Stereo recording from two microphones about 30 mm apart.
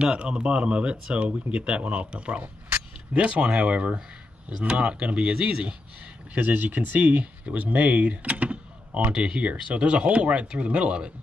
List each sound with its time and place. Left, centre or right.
0.2 s speech: right
5.3 s speech: right
6.4 s speech: right
7.4 s speech: right
9.1 s speech: right